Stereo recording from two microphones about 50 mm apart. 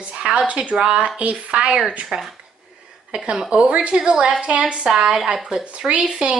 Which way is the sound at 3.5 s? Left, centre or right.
Right.